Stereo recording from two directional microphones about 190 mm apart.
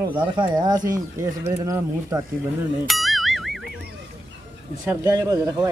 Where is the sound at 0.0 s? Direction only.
25° right (ahead or behind).